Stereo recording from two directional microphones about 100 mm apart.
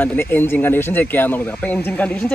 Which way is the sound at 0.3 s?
20° left (ahead or behind).